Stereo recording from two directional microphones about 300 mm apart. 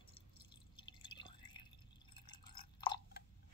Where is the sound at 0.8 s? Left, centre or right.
Centre.